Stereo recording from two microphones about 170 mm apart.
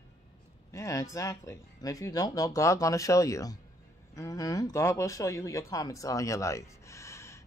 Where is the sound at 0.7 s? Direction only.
20° left (ahead or behind).